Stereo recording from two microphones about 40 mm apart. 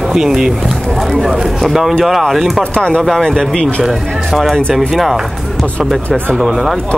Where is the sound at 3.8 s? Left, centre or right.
Centre.